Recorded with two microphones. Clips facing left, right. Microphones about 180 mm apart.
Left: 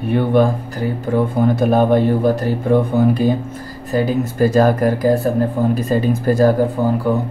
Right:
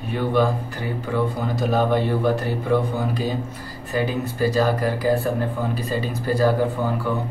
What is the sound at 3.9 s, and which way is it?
Speech, 45° left (ahead or behind).